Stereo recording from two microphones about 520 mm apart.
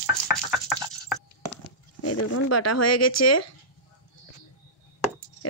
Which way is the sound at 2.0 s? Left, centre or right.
Left.